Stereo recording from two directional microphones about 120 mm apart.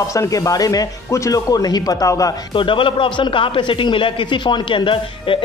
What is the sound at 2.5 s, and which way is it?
A man's voice, 45° left (ahead or behind).